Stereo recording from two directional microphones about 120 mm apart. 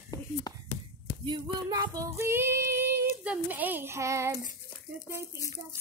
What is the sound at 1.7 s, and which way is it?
Child singing, 30° right (ahead or behind).